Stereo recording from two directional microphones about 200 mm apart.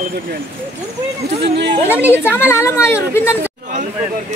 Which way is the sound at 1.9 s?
10° right (ahead or behind).